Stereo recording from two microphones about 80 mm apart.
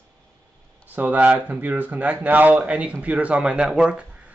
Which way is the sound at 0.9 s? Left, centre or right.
Right.